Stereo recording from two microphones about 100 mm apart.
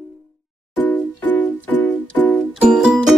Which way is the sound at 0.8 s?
20° left (ahead or behind).